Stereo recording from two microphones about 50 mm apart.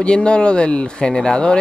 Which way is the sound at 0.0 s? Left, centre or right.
Left.